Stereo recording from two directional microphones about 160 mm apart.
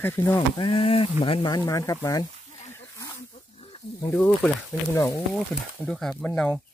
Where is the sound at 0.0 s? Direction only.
15° left (ahead or behind).